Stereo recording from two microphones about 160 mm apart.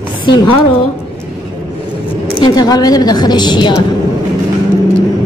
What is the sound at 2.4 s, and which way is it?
A woman's voice, 25° left (ahead or behind).